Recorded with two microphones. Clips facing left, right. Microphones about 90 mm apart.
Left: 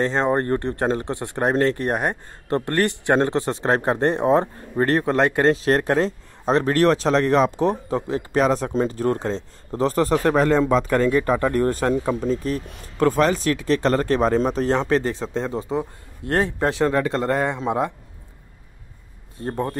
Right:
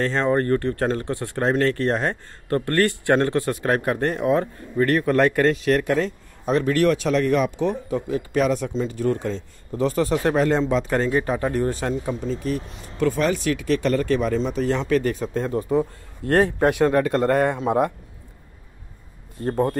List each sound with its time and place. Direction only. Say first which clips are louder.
0.0 s speech: even; 20° left (ahead or behind)
8.6 s speech: left 2 dB; 45° left (ahead or behind)
12.2 s speech: left 2 dB; 40° left (ahead or behind)
15.0 s speech: right 1 dB; 25° left (ahead or behind)